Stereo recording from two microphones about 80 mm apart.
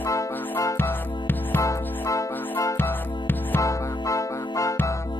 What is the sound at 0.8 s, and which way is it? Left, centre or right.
Music, left.